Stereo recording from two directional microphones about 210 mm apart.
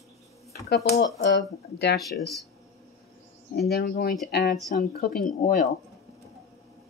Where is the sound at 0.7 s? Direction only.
60° left (ahead or behind).